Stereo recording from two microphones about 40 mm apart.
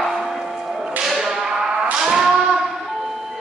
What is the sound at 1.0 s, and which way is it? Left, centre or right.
Whip, centre.